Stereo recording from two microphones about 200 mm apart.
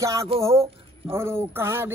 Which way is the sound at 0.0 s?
15° right (ahead or behind).